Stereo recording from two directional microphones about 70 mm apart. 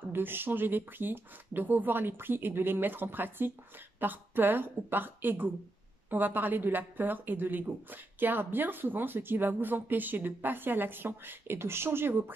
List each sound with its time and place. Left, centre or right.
0.1 s a woman's voice: right